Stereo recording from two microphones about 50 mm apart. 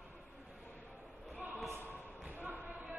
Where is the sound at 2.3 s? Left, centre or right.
Right.